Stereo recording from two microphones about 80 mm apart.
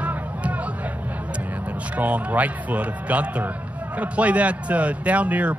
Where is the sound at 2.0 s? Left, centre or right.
Centre.